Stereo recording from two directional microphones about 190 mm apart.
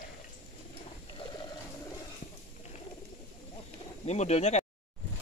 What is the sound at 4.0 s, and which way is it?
Speech, 35° left (ahead or behind).